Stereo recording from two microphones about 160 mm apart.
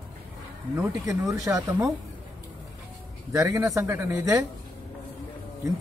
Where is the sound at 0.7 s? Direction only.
20° right (ahead or behind).